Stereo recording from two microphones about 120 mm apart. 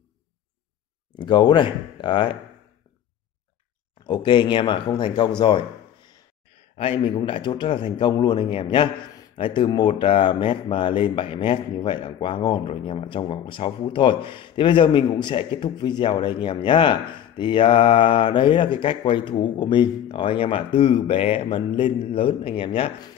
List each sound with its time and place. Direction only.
1.1 s speech: 40° left (ahead or behind)
4.0 s speech: 40° left (ahead or behind)
5.4 s a sound: 40° left (ahead or behind)
6.8 s speech: 50° left (ahead or behind)